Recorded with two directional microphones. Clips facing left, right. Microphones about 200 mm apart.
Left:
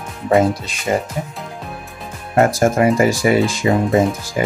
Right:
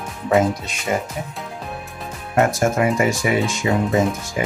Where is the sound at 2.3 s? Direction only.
35° left (ahead or behind).